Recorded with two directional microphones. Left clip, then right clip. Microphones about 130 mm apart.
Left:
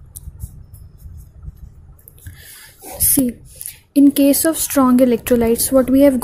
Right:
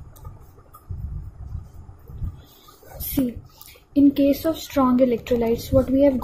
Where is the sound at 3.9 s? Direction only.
45° left (ahead or behind).